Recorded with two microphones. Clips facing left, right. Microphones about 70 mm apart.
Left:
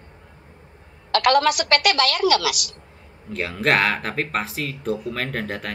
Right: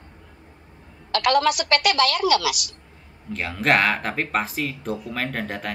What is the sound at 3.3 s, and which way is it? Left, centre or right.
Speech, centre.